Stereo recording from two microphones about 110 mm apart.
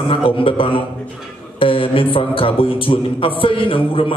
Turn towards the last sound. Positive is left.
turn(degrees=55)  # may be behind; listen again after turning